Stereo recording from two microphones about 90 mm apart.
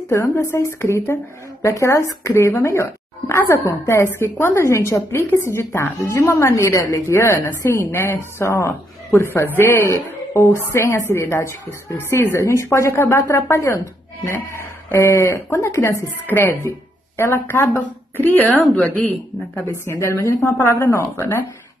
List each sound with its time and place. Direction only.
0.1 s a woman's voice: 30° left (ahead or behind)